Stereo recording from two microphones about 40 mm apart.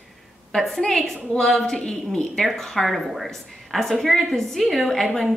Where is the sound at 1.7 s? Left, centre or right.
Centre.